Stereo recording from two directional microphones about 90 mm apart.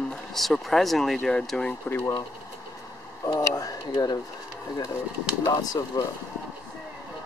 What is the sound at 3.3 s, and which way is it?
Speech, 40° left (ahead or behind).